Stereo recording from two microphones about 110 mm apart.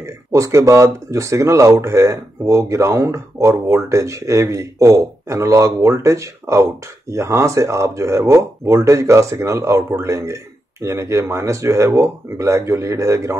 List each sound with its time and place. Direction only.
0.0 s speech: 30° right (ahead or behind)